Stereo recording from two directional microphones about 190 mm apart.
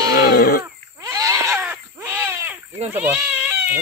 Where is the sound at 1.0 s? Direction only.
15° right (ahead or behind).